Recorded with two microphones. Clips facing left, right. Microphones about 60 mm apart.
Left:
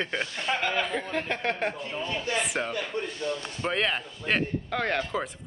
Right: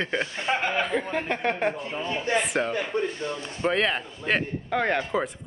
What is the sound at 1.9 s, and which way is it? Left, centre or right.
A man's voice, right.